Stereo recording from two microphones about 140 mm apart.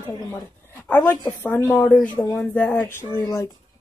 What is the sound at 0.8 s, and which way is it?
Speech, 15° left (ahead or behind).